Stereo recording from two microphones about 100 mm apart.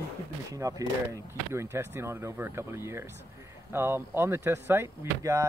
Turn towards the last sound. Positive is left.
turn(degrees=-30)  # may be behind; listen again after turning